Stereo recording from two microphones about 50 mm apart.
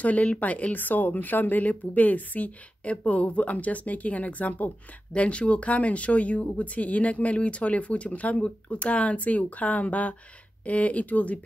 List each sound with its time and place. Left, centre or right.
0.0 s speech: left